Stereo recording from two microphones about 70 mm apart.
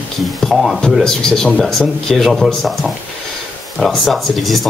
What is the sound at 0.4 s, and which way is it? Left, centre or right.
Speech, centre.